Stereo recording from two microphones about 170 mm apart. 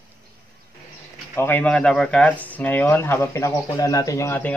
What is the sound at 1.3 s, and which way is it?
Speech, 10° left (ahead or behind).